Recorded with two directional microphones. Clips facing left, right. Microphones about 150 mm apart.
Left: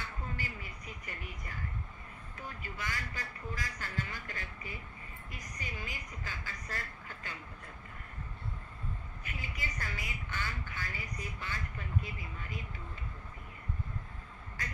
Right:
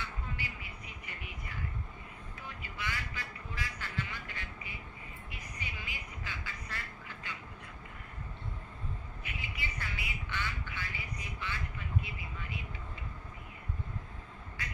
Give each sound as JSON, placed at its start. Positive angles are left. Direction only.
{"t": 0.0, "sound": "vehicle", "side_deg": 40}
{"t": 9.2, "sound": "quack", "side_deg": 45}
{"t": 14.6, "sound": "speech", "side_deg": 40}